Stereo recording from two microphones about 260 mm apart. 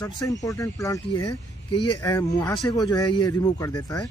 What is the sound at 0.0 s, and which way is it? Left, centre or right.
Speech, centre.